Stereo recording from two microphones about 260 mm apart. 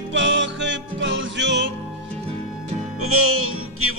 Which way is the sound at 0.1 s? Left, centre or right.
Right.